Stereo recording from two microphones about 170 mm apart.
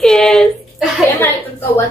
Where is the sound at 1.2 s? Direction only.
15° left (ahead or behind).